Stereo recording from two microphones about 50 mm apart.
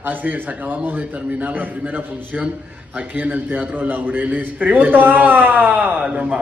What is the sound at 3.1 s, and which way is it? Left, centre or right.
A man's voice, right.